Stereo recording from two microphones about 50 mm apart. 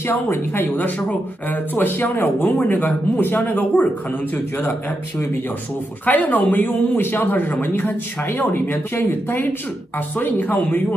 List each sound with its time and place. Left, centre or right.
0.0 s speech: left
6.0 s speech: left